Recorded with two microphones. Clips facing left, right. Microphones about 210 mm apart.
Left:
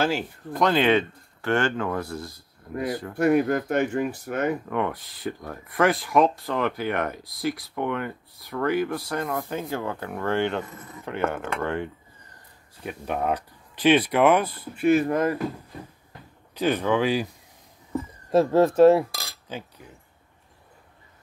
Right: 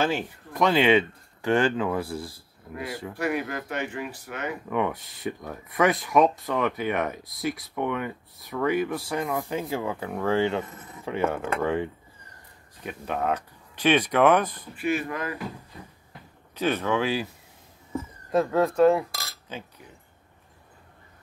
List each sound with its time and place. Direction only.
0.0 s speech: centre (ahead or behind)
2.7 s speech: 45° left (ahead or behind)
4.6 s speech: 5° right (ahead or behind)
11.6 s speech: 5° right (ahead or behind)
12.8 s speech: 10° left (ahead or behind)
14.8 s speech: 45° left (ahead or behind)
16.5 s speech: 10° left (ahead or behind)
18.3 s speech: 30° left (ahead or behind)
19.1 s a sound: 15° left (ahead or behind)